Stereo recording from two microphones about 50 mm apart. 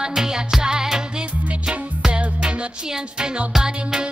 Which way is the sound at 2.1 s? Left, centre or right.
Right.